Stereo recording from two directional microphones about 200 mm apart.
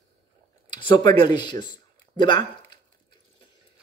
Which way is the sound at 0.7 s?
25° left (ahead or behind).